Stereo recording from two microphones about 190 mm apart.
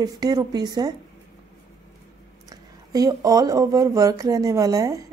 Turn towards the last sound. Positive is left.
turn(degrees=-15)  # may be behind; listen again after turning